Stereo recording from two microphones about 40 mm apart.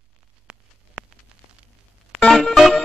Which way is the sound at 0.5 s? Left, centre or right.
Right.